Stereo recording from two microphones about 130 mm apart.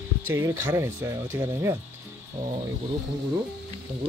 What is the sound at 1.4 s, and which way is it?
Speech, 30° right (ahead or behind).